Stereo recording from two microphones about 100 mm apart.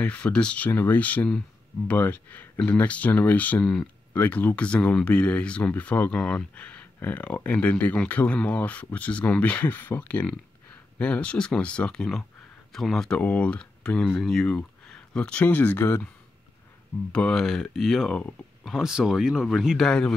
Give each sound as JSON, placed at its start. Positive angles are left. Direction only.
{"t": 0.0, "sound": "speech", "side_deg": 10}
{"t": 15.4, "sound": "speech", "side_deg": 20}
{"t": 17.1, "sound": "speech", "side_deg": 10}
{"t": 18.6, "sound": "speech", "side_deg": -5}
{"t": 19.9, "sound": "speech", "side_deg": 10}